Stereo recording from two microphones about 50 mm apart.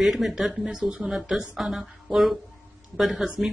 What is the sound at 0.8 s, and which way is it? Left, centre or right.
Speech, right.